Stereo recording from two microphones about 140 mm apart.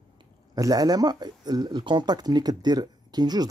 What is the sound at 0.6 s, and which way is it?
Speech, 25° right (ahead or behind).